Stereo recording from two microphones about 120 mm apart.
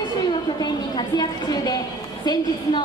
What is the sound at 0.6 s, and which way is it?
A woman's voice, 35° left (ahead or behind).